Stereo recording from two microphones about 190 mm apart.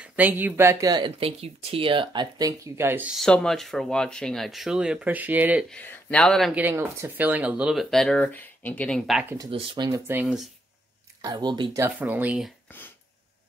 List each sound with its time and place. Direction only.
0.0 s speech: 10° right (ahead or behind)
5.7 s speech: 5° left (ahead or behind)
6.6 s speech: 10° right (ahead or behind)
9.5 s speech: 30° right (ahead or behind)
9.8 s speech: 15° right (ahead or behind)
11.2 s speech: 20° right (ahead or behind)
11.8 s speech: 10° right (ahead or behind)